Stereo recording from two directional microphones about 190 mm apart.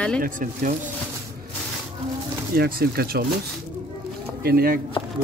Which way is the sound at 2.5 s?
50° right (ahead or behind).